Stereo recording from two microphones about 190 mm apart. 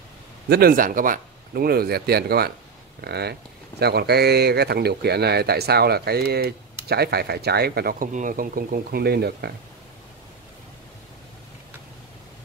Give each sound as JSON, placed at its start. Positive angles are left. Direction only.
{"t": 0.5, "sound": "speech", "side_deg": -50}